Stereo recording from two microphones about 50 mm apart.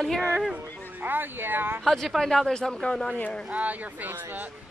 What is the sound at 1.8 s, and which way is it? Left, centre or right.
Speech, centre.